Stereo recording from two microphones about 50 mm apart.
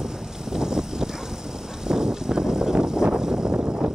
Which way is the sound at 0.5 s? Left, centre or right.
Centre.